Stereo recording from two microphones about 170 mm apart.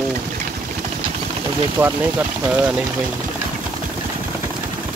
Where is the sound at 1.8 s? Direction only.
10° right (ahead or behind).